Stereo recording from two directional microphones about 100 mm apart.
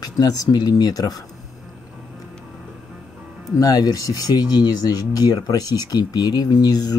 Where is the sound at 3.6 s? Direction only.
40° left (ahead or behind).